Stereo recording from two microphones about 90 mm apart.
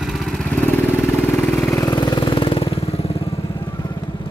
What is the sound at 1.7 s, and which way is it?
Vehicle, 45° left (ahead or behind).